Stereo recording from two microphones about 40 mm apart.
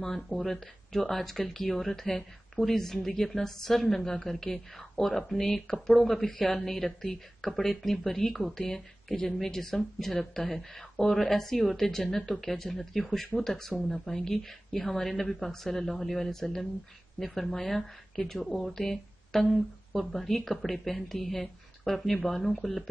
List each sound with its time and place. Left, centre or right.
0.4 s speech: centre
13.2 s speech: centre
13.5 s speech: centre